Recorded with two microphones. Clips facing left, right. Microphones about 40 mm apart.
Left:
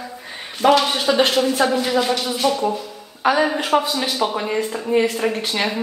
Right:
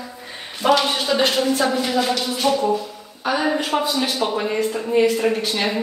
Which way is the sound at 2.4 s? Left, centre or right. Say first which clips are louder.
Right 2 dB; centre.